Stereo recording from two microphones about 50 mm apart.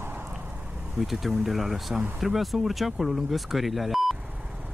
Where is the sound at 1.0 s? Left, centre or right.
Centre.